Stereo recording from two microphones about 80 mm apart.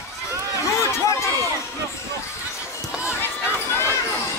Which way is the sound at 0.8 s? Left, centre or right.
Left.